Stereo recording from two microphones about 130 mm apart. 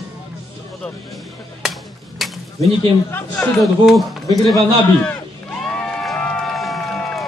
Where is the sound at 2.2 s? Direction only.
Centre (ahead or behind).